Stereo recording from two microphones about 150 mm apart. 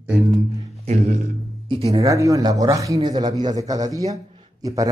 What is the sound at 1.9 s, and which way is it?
A man's voice, 20° right (ahead or behind).